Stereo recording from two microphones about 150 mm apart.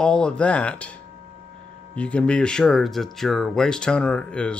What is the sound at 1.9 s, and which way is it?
Speech, 10° left (ahead or behind).